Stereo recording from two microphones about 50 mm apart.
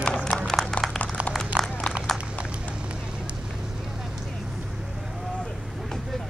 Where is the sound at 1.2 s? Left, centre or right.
Right.